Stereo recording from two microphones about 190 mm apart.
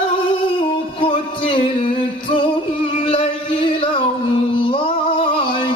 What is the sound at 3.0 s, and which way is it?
Music, 30° left (ahead or behind).